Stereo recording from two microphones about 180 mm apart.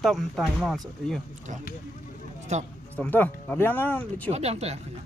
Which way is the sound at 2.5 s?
40° right (ahead or behind).